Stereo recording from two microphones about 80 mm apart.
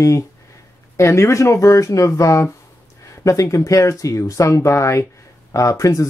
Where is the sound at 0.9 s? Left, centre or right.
Left.